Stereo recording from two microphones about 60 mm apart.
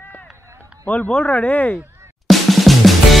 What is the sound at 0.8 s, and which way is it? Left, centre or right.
Speech, left.